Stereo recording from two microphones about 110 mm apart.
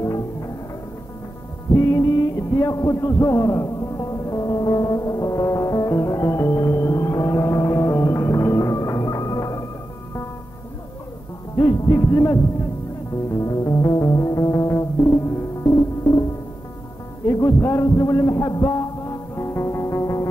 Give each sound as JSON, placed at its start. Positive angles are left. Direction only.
{"t": 0.0, "sound": "music", "side_deg": 30}
{"t": 1.8, "sound": "music", "side_deg": 30}
{"t": 11.5, "sound": "music", "side_deg": 30}
{"t": 17.3, "sound": "music", "side_deg": 30}